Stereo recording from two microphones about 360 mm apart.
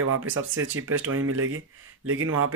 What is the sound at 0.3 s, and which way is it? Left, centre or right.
Speech, right.